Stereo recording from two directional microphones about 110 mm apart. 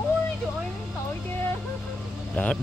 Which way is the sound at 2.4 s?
10° left (ahead or behind).